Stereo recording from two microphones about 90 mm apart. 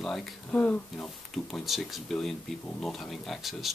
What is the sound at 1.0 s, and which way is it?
Speech, 5° left (ahead or behind).